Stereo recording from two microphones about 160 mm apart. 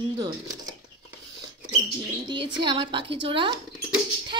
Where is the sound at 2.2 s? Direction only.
30° right (ahead or behind).